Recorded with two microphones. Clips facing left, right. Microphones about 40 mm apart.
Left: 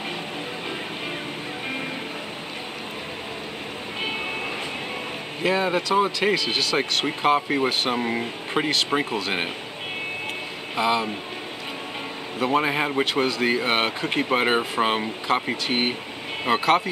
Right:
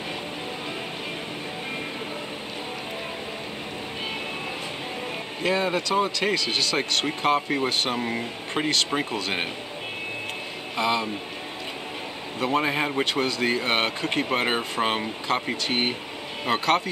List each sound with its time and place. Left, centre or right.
5.4 s speech: centre
10.8 s speech: centre
12.4 s speech: centre